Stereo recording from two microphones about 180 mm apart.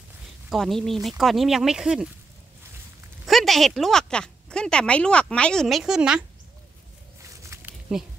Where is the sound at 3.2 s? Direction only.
Centre (ahead or behind).